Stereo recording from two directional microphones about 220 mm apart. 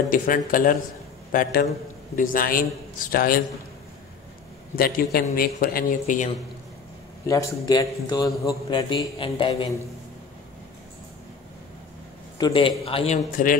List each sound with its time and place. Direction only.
0.1 s speech: 40° left (ahead or behind)
4.7 s speech: 40° left (ahead or behind)
7.2 s a man's voice: 15° left (ahead or behind)
12.4 s a man's voice: 20° left (ahead or behind)